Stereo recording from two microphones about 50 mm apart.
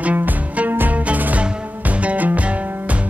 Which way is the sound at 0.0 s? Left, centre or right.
Right.